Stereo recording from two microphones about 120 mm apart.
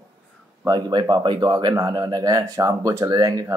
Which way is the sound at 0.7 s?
35° right (ahead or behind).